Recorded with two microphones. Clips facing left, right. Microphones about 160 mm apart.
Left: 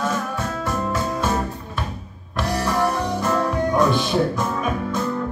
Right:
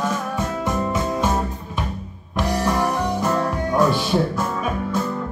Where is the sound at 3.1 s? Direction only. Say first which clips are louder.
Even; 10° right (ahead or behind).